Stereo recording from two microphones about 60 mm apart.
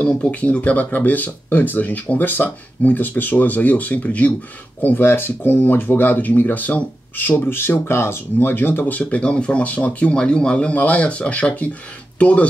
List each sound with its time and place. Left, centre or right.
0.0 s speech: left